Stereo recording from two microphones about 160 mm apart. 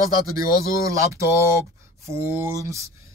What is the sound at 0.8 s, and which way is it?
Speech, 20° right (ahead or behind).